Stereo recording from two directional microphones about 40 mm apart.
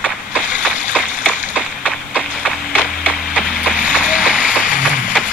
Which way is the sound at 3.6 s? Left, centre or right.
Right.